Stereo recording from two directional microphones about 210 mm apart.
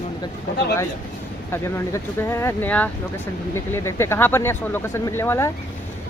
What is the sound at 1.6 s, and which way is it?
Speech, 10° left (ahead or behind).